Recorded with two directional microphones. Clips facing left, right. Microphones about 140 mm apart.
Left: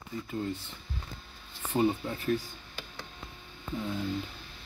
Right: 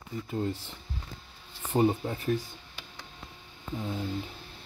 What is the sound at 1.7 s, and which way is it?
Speech, 30° right (ahead or behind).